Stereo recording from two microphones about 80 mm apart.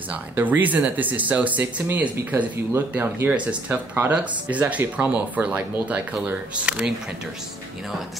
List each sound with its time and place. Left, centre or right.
0.1 s speech: right
2.1 s speech: right; by 6.9 s centre